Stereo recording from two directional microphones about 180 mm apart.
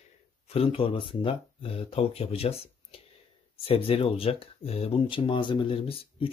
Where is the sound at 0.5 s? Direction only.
30° left (ahead or behind).